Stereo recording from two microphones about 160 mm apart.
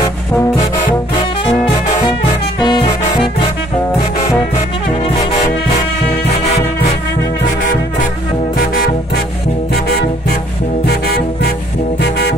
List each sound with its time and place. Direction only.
2.6 s music: 30° left (ahead or behind)
8.5 s music: 65° left (ahead or behind)
12.0 s music: 90° left